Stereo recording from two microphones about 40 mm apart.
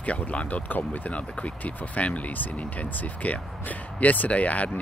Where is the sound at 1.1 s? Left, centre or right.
Left.